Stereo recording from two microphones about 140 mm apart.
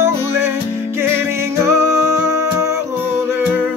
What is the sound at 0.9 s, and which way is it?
Music, 15° right (ahead or behind).